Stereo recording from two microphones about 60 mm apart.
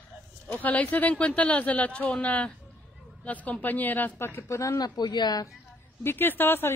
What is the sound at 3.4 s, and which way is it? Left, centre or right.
Speech, left.